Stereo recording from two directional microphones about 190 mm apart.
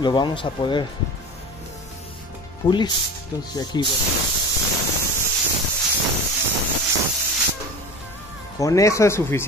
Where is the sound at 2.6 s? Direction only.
25° left (ahead or behind).